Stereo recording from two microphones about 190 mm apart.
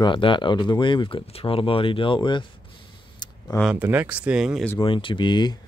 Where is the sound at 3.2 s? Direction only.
25° left (ahead or behind).